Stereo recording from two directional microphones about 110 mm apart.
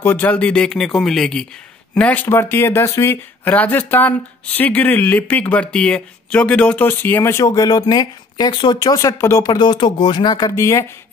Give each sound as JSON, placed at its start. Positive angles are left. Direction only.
{"t": 0.0, "sound": "speech", "side_deg": 15}
{"t": 2.0, "sound": "speech", "side_deg": 15}